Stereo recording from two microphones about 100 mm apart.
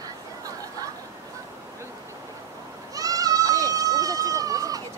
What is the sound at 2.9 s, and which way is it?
Goat, 35° right (ahead or behind).